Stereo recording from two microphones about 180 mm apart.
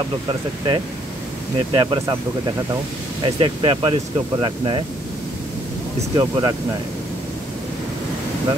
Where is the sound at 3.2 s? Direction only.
25° right (ahead or behind).